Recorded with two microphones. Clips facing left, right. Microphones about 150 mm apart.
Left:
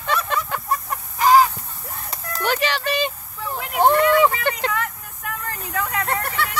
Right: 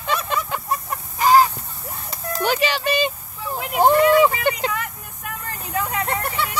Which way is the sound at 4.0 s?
15° right (ahead or behind).